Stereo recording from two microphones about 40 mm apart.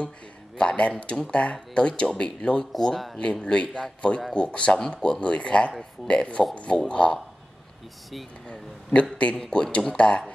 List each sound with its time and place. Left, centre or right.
0.6 s speech: left
2.6 s speech: centre
3.3 s speech: left
4.7 s speech: left
9.5 s speech: left